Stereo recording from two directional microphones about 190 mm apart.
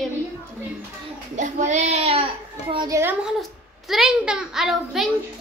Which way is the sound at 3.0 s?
5° right (ahead or behind).